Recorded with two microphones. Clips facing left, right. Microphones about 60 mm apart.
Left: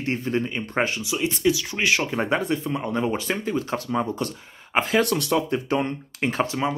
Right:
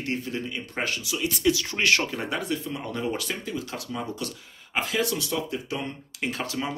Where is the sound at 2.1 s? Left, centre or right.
Left.